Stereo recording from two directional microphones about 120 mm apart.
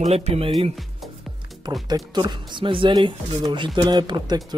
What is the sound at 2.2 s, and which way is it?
Speech, 40° right (ahead or behind).